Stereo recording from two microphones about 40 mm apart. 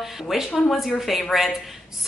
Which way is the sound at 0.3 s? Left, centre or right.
Centre.